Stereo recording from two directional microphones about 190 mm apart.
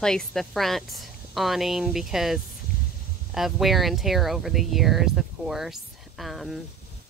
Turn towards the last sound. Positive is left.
turn(degrees=0)  # may be behind; listen again after turning